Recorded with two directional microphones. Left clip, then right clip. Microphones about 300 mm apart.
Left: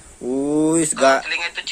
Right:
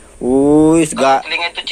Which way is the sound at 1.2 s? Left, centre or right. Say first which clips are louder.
Right 5 dB; centre.